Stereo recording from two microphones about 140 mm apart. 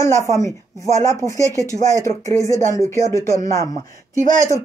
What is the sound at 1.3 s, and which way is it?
Speech, 20° right (ahead or behind).